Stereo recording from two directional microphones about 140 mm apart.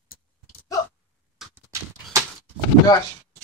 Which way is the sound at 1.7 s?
20° right (ahead or behind).